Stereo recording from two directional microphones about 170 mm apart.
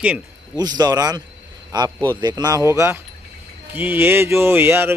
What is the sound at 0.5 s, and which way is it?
Speech, 25° right (ahead or behind).